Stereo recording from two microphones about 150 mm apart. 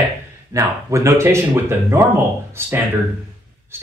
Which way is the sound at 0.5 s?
20° right (ahead or behind).